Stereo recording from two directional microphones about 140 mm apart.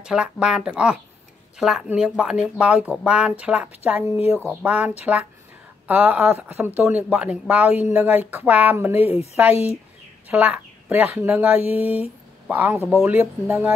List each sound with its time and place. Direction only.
0.0 s speech: 5° right (ahead or behind)
9.0 s a woman's voice: 45° left (ahead or behind)
10.3 s speech: 10° right (ahead or behind)